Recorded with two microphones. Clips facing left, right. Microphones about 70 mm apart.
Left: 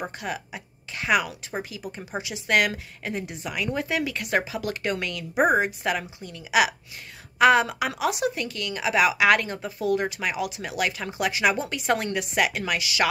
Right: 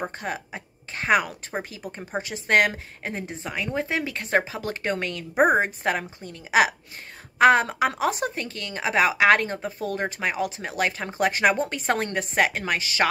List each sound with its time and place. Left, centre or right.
0.2 s a woman's voice: right